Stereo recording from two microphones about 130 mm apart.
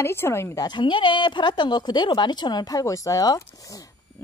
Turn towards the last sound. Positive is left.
turn(degrees=25)  # may be behind; listen again after turning